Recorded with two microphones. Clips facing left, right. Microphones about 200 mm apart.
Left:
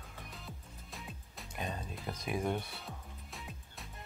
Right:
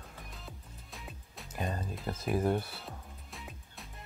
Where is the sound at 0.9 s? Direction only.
Centre (ahead or behind).